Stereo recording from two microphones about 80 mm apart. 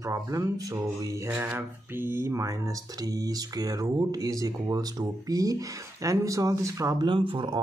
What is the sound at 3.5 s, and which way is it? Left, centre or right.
Speech, right.